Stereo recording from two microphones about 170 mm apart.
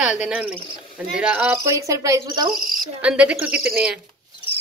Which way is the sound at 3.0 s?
5° right (ahead or behind).